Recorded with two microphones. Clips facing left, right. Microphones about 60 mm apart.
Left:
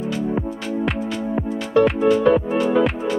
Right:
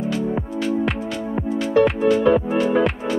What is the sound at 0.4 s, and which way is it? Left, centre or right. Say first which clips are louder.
Music: right 2 dB; centre.